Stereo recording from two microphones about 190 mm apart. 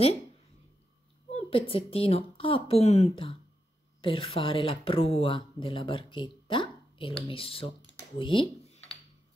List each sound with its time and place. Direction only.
1.3 s a woman's voice: 30° left (ahead or behind)